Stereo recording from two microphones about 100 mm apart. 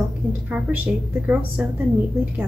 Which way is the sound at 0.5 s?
15° right (ahead or behind).